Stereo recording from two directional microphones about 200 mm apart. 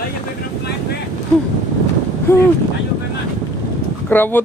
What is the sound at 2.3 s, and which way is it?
Speech, 10° left (ahead or behind).